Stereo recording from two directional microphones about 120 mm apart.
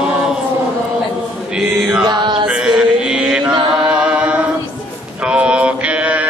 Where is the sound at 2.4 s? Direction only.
5° right (ahead or behind).